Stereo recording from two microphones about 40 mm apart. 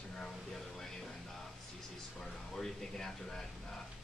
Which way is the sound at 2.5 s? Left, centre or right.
Centre.